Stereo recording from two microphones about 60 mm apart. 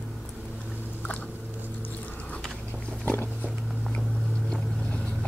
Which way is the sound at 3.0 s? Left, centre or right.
Left.